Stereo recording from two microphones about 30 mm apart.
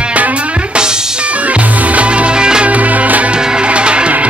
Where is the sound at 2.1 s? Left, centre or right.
Right.